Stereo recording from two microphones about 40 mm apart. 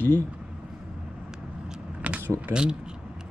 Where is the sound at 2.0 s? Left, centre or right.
Right.